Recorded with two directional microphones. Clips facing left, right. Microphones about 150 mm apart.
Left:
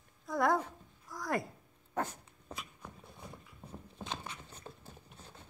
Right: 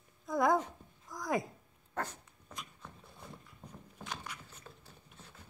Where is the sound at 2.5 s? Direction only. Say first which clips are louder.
Left 2 dB; 35° left (ahead or behind).